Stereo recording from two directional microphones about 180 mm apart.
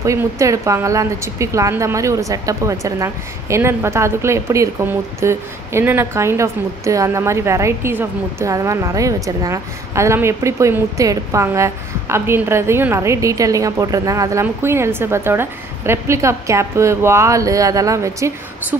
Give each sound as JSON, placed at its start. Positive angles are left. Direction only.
{"t": 0.0, "sound": "a woman's voice", "side_deg": -15}